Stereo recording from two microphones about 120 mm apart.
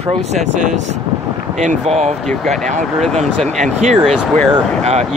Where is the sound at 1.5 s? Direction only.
80° right.